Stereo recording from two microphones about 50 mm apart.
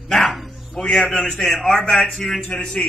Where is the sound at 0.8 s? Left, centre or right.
Left.